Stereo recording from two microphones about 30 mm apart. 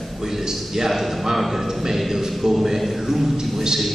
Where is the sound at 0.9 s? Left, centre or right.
Centre.